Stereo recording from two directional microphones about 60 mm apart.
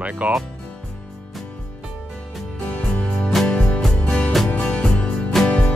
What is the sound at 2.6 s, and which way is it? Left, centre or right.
Music, left.